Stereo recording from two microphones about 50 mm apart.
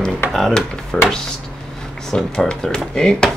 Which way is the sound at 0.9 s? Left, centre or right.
Centre.